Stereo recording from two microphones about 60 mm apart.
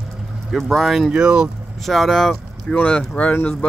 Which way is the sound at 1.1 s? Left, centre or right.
Centre.